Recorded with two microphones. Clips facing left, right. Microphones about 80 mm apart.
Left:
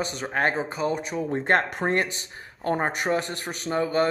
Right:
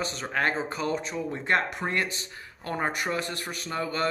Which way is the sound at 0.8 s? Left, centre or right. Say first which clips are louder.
Left 4 dB; centre.